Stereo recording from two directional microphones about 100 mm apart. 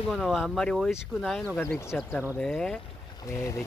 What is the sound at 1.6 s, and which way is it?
Speech, 25° left (ahead or behind).